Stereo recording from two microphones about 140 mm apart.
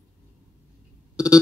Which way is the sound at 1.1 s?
5° right (ahead or behind).